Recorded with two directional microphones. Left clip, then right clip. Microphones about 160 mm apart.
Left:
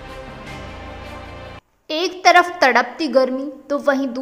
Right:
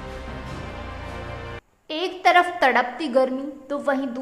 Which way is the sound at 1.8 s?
30° left (ahead or behind).